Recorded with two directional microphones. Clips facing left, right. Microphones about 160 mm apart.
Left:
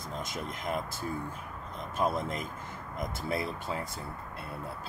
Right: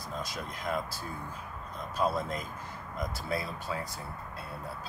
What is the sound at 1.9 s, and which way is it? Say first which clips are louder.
Speech: even; 20° left (ahead or behind).